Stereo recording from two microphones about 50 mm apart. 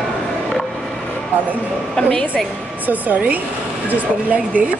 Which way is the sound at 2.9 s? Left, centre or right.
Right.